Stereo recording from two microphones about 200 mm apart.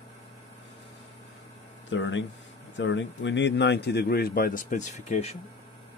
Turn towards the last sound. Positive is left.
turn(degrees=35)  # may be behind; listen again after turning